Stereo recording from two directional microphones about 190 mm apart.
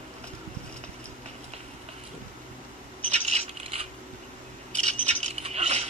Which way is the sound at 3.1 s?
35° right (ahead or behind).